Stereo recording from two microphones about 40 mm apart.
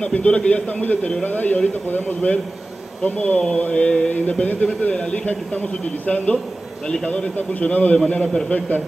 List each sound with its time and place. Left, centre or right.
0.0 s a man's voice: left
1.2 s a man's voice: left
3.3 s mantra: left
4.1 s a man's voice: left
6.0 s a man's voice: left